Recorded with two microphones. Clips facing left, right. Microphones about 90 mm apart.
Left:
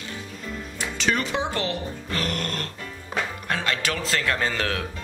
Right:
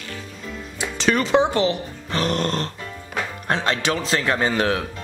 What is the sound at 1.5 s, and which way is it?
A man's voice, 25° right (ahead or behind).